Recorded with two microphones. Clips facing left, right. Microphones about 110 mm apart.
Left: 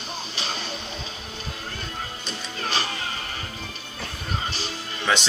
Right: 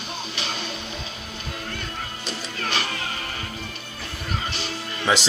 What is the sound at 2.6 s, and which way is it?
Music, 30° left (ahead or behind).